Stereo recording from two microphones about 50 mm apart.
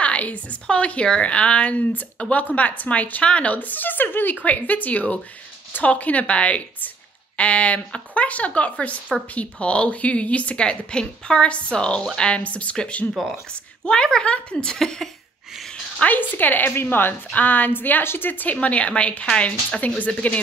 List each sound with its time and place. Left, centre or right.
0.0 s a woman's voice: left; by 15.0 s centre
16.1 s a woman's voice: left
17.3 s a woman's voice: left